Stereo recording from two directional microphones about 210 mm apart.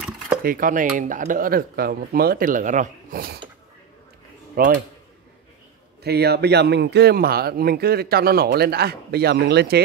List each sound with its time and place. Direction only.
0.4 s speech: 40° right (ahead or behind)
4.6 s speech: 45° right (ahead or behind)
6.0 s speech: 50° right (ahead or behind)